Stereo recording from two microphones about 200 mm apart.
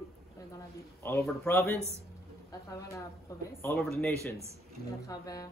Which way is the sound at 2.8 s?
15° left (ahead or behind).